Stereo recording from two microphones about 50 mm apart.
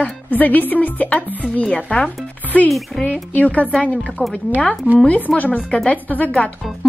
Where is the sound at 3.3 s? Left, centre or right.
Left.